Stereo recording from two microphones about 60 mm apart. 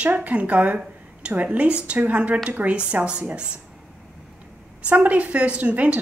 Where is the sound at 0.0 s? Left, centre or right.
Right.